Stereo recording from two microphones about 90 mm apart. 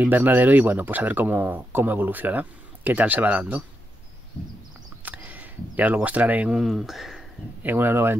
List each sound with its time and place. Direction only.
0.0 s speech: 20° right (ahead or behind)
5.0 s a sound: 20° right (ahead or behind)
6.5 s speech: 5° right (ahead or behind)
7.6 s speech: 25° right (ahead or behind)